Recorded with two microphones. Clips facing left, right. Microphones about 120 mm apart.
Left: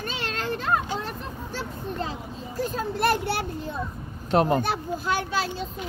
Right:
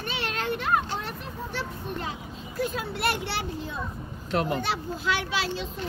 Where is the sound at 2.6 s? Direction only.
40° left (ahead or behind).